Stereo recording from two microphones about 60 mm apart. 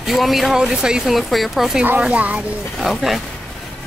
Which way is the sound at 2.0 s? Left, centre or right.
Right.